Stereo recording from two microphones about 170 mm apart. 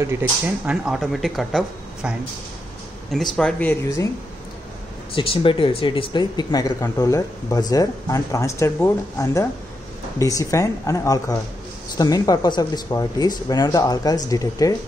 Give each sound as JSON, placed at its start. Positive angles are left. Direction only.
{"t": 0.7, "sound": "speech", "side_deg": -5}
{"t": 3.1, "sound": "speech", "side_deg": 5}
{"t": 5.1, "sound": "speech", "side_deg": 30}